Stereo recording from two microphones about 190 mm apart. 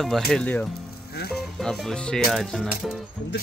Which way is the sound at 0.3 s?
5° left (ahead or behind).